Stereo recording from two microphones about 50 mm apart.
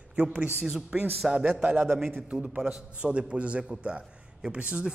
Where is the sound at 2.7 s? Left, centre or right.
Right.